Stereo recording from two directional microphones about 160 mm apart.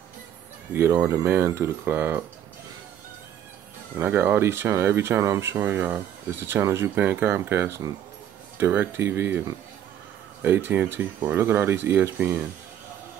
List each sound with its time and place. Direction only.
0.7 s speech: 15° right (ahead or behind)
4.0 s speech: 15° right (ahead or behind)
10.4 s speech: 15° right (ahead or behind)